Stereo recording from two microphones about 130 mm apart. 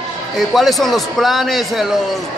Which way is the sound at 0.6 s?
Centre (ahead or behind).